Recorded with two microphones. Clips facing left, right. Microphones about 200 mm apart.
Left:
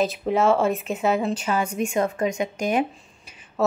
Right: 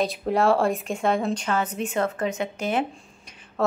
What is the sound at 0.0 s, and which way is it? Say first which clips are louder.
Speech: left 1 dB; centre (ahead or behind).